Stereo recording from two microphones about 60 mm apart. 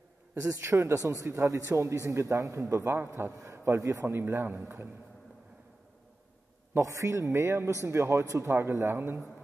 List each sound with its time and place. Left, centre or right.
0.4 s a man's voice: right
3.8 s a man's voice: right
4.1 s a man's voice: right
6.8 s a man's voice: right